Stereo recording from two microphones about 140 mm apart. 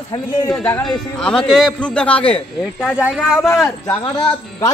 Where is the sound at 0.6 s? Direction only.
5° left (ahead or behind).